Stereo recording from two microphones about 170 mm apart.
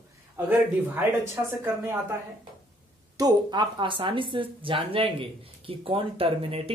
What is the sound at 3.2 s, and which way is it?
Speech, 25° right (ahead or behind).